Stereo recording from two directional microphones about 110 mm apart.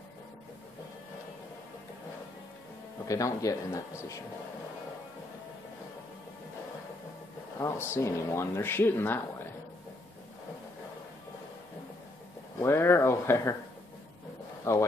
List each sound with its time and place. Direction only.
3.1 s speech: 30° left (ahead or behind)
7.5 s speech: 25° left (ahead or behind)
12.5 s speech: 25° left (ahead or behind)
14.6 s speech: 25° left (ahead or behind)